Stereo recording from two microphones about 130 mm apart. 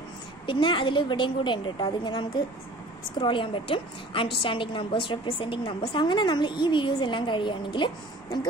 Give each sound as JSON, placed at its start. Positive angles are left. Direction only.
{"t": 0.5, "sound": "a woman's voice", "side_deg": 40}